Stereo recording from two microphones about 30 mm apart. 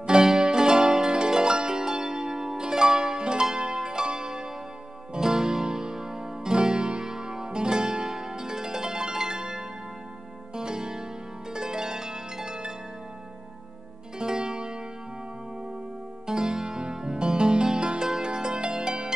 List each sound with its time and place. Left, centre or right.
0.0 s music: right
3.5 s pizzicato: right
5.1 s music: right
11.5 s pizzicato: right
14.1 s music: right
16.3 s music: right